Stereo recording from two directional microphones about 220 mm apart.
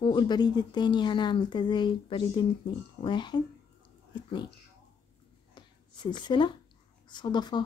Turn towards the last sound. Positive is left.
turn(degrees=20)  # may be behind; listen again after turning